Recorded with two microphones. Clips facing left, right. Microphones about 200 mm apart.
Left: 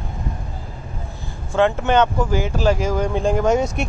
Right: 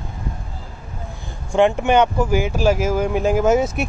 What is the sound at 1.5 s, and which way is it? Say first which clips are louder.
Speech: right 2 dB; 15° right (ahead or behind).